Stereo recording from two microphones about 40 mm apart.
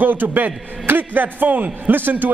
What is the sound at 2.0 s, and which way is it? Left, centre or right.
Speech, right.